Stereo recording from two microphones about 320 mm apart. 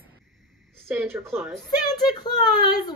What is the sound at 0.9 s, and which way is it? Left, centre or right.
Speech, centre.